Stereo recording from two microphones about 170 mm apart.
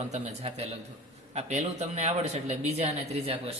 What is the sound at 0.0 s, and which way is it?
A man's voice, 35° right (ahead or behind).